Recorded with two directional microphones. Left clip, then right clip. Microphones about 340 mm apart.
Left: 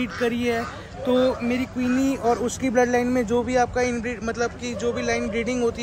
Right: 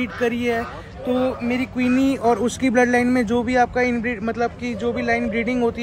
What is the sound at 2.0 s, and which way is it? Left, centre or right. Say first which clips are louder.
A man's voice: right 3 dB; right.